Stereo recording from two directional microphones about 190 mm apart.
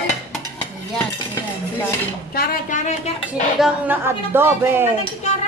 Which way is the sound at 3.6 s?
10° right (ahead or behind).